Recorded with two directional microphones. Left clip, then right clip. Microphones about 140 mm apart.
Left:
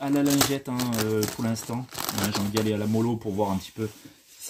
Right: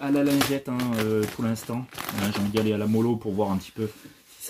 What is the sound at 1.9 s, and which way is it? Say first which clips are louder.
Speech: left 2 dB; 90° left.